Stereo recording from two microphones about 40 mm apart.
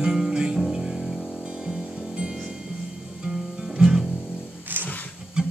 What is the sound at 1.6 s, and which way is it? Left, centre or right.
Music, right.